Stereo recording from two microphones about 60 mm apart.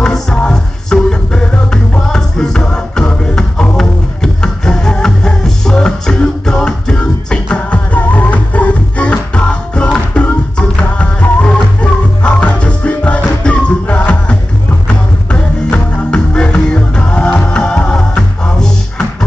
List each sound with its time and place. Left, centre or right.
0.0 s music: centre